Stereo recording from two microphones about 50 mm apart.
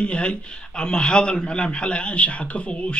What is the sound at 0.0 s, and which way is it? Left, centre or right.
A man's voice, left.